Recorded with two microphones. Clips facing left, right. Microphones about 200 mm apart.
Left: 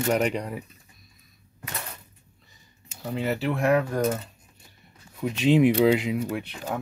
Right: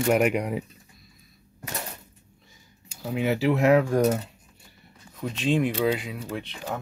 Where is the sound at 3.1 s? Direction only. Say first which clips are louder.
Right 4 dB; 15° right (ahead or behind).